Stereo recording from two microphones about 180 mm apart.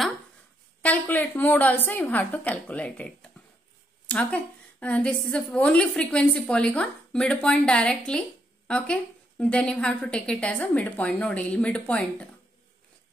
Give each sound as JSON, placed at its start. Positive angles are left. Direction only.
{"t": 0.8, "sound": "a woman's voice", "side_deg": 10}